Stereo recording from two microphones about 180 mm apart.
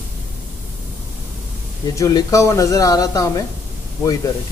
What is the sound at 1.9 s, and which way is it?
Speech, 20° left (ahead or behind).